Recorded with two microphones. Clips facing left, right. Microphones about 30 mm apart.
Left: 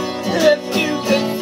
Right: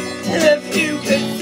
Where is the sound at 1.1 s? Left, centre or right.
Right.